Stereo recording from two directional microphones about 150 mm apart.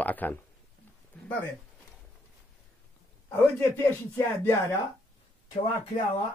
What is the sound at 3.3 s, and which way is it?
A man's voice, 15° left (ahead or behind).